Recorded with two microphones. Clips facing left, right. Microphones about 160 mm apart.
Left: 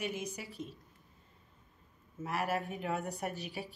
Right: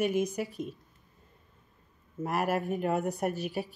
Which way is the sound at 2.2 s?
40° right (ahead or behind).